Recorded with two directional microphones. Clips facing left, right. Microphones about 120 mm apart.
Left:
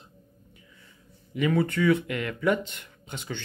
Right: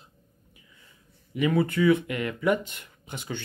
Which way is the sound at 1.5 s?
10° right (ahead or behind).